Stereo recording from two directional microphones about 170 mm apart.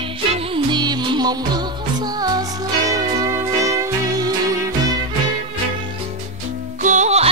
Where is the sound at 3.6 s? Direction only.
20° right (ahead or behind).